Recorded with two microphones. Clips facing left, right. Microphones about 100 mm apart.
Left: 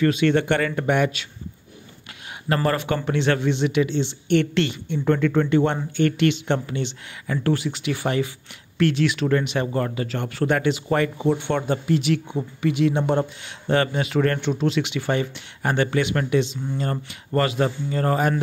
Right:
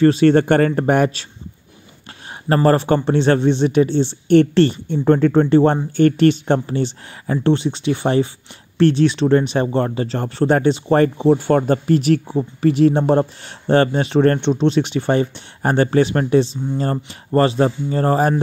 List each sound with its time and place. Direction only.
0.0 s speech: 35° right (ahead or behind)
2.4 s speech: 35° right (ahead or behind)